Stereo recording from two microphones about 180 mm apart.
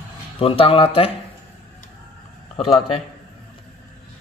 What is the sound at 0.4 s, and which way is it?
Speech, 30° left (ahead or behind).